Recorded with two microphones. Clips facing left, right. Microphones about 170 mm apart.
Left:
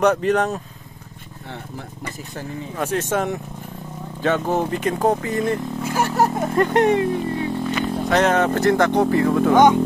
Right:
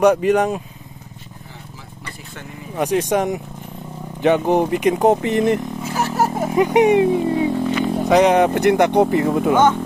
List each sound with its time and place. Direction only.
0.0 s speech: 10° right (ahead or behind)
2.7 s speech: 15° right (ahead or behind)
5.9 s speech: centre (ahead or behind); by 9.6 s 20° right (ahead or behind)